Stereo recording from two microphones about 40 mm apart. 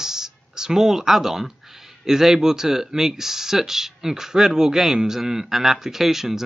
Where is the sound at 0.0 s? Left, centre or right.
Centre.